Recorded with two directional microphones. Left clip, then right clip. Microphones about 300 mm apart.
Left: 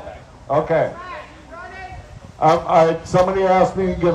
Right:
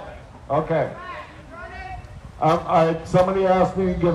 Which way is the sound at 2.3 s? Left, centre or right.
Left.